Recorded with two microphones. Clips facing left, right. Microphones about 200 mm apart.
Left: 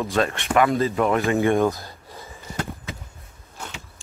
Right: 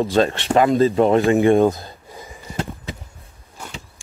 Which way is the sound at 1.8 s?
20° right (ahead or behind).